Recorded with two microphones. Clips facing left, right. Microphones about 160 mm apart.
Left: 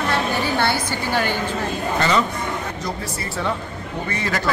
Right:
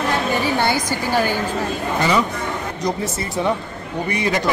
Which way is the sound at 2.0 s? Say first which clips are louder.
Right 1 dB; 10° right (ahead or behind).